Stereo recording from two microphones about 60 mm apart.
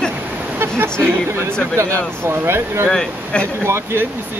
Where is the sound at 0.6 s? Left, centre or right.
Right.